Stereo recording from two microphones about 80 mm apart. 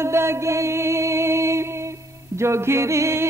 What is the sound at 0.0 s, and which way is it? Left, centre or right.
Music, right.